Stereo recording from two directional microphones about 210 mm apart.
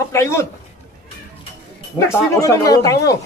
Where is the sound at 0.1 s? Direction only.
15° left (ahead or behind).